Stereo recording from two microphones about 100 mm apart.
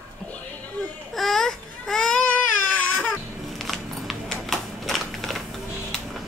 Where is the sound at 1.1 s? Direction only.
Centre (ahead or behind).